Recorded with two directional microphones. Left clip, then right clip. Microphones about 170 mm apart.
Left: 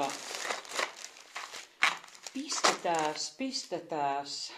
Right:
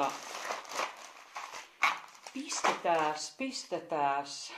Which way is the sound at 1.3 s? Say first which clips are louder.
Even; 50° left (ahead or behind).